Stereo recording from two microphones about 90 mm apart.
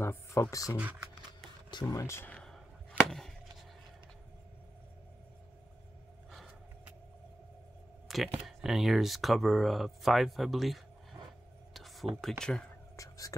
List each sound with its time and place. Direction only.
0.0 s speech: 30° left (ahead or behind)
1.7 s speech: 50° left (ahead or behind)
2.0 s speech: 30° left (ahead or behind)
2.2 s a sound: 10° left (ahead or behind)
3.1 s chop: 5° left (ahead or behind)
8.1 s a sound: centre (ahead or behind)
8.6 s speech: 5° right (ahead or behind)
11.7 s a sound: centre (ahead or behind)
12.2 s speech: 5° left (ahead or behind)
12.9 s whispering: 40° left (ahead or behind)